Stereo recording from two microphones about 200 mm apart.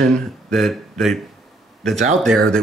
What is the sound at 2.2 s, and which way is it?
Speech, 5° left (ahead or behind).